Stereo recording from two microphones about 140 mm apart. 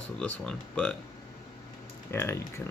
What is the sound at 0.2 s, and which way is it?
Speech, 5° left (ahead or behind).